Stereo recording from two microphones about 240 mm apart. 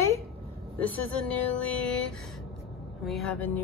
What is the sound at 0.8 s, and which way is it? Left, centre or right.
A woman's voice, centre.